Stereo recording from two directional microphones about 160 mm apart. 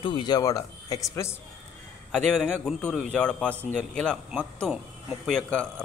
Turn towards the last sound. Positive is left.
turn(degrees=-5)  # may be behind; listen again after turning